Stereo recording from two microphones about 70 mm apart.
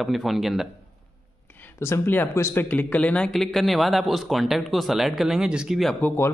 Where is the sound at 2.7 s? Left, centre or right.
Left.